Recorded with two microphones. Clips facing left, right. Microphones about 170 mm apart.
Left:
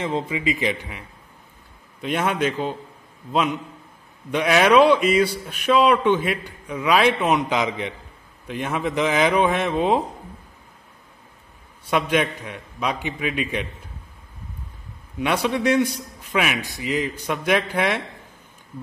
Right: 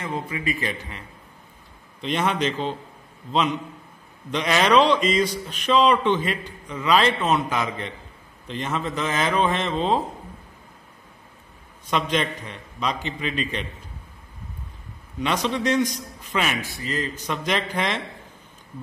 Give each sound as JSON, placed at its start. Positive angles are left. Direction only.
{"t": 0.0, "sound": "a man's voice", "side_deg": 20}
{"t": 11.9, "sound": "a man's voice", "side_deg": 10}
{"t": 15.1, "sound": "a man's voice", "side_deg": 10}